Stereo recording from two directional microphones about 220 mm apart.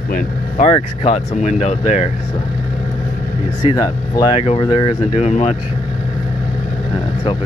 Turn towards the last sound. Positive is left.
turn(degrees=30)  # may be behind; listen again after turning